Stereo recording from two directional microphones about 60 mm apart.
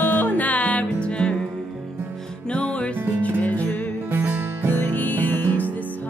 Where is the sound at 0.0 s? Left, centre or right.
Left.